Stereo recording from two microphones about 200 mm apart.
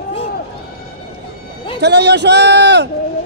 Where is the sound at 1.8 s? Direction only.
60° right (ahead or behind).